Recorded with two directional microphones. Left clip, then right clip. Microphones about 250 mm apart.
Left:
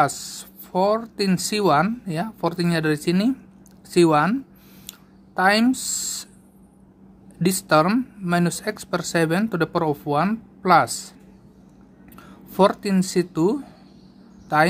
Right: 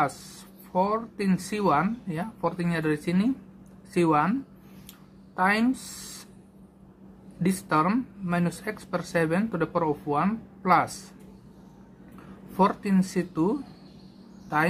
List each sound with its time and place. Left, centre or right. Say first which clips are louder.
0.0 s speech: left 6 dB; left
4.8 s a sound: left 7 dB; left
7.4 s speech: left 6 dB; left
12.5 s speech: left 6 dB; left